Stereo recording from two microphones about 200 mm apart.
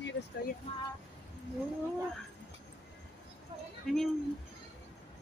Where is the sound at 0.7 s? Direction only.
30° left (ahead or behind).